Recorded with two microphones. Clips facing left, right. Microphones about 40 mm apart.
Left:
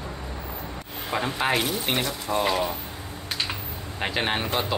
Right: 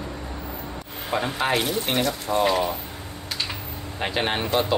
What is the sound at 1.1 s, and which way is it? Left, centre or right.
Speech, centre.